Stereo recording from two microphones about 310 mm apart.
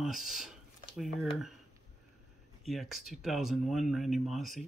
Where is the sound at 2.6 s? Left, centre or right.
Centre.